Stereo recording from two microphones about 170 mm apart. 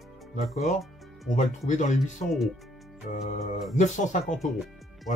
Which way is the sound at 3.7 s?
45° left (ahead or behind).